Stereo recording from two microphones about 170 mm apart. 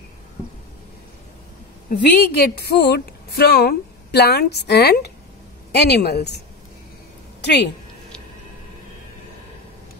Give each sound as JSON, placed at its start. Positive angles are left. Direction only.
{"t": 1.9, "sound": "a woman's voice", "side_deg": 70}